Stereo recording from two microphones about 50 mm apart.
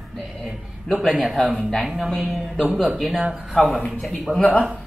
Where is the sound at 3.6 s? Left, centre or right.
Centre.